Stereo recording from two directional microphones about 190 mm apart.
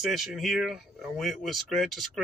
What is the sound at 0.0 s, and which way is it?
Speech, centre (ahead or behind).